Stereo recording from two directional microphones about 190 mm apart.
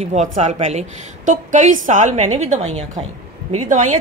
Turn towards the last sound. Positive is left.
turn(degrees=-40)  # may be behind; listen again after turning